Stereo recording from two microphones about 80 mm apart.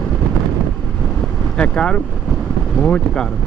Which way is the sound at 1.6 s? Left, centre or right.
Centre.